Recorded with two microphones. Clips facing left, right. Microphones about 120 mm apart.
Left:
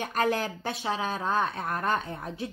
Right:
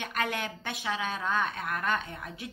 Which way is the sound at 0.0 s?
40° left (ahead or behind).